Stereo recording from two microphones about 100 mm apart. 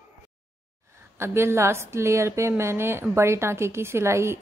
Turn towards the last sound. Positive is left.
turn(degrees=-25)  # may be behind; listen again after turning